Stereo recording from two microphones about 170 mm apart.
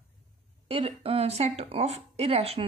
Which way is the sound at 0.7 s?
35° right (ahead or behind).